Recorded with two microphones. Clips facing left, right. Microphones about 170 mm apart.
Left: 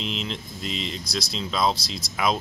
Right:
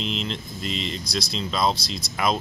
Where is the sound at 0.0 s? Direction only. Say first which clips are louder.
Right 2 dB; 5° left (ahead or behind).